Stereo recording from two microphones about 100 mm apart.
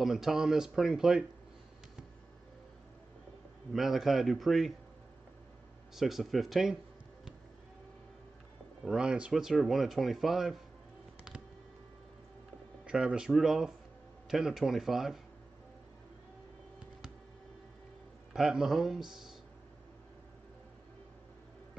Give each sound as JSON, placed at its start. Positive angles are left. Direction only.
{"t": 0.0, "sound": "speech", "side_deg": -5}
{"t": 3.7, "sound": "speech", "side_deg": -5}
{"t": 5.9, "sound": "speech", "side_deg": 0}
{"t": 8.8, "sound": "speech", "side_deg": -10}
{"t": 12.8, "sound": "speech", "side_deg": -10}
{"t": 18.3, "sound": "speech", "side_deg": -5}